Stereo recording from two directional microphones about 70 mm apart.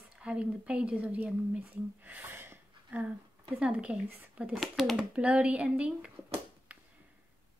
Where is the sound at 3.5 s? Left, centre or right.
Centre.